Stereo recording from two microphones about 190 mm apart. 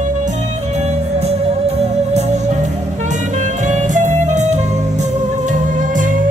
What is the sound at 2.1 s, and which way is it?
Music, 35° right (ahead or behind).